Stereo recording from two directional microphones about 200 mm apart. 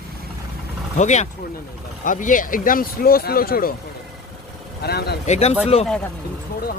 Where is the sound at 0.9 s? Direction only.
35° left (ahead or behind).